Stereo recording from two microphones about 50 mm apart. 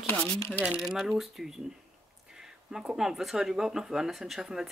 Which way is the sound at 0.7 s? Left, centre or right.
Centre.